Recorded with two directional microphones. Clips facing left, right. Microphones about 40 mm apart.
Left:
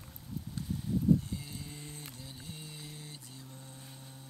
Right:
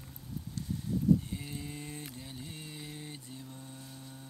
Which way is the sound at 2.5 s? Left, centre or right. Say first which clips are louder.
Right 2 dB; centre.